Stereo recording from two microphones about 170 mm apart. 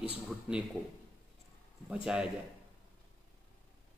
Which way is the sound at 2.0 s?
5° right (ahead or behind).